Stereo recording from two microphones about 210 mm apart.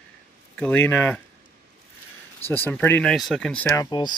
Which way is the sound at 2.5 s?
10° left (ahead or behind).